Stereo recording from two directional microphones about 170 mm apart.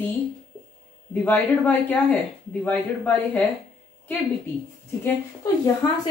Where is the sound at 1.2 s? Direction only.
10° left (ahead or behind).